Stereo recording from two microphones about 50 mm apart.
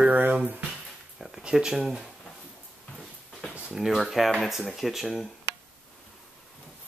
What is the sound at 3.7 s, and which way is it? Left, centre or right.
Speech, centre.